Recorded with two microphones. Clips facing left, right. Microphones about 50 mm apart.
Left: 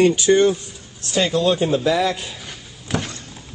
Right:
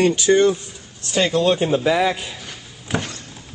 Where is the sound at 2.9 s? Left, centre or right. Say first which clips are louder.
Even; centre.